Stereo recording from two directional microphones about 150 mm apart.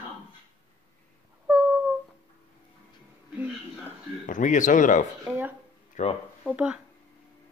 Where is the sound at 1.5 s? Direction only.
Centre (ahead or behind).